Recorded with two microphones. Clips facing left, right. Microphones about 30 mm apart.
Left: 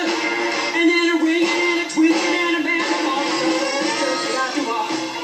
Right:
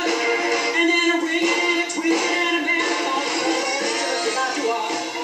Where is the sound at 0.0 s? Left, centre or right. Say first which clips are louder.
Even; centre.